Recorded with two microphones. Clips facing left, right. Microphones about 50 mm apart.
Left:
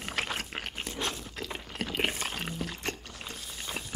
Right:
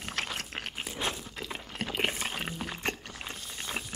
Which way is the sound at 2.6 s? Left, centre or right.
Right.